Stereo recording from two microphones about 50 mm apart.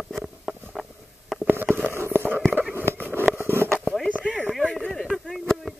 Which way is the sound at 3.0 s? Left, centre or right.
Right.